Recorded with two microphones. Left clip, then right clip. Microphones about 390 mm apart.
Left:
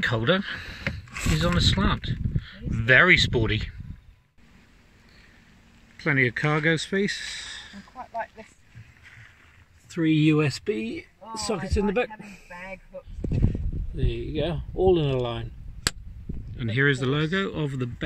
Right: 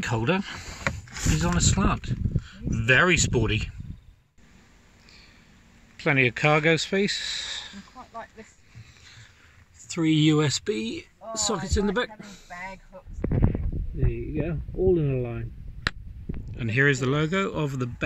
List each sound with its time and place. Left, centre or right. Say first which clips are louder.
0.0 s speech: left 3 dB; centre
5.9 s speech: right 1 dB; centre
9.8 s speech: even; centre
13.2 s a sound: right 4 dB; right
14.0 s speech: left 3 dB; left
16.5 s speech: right 1 dB; centre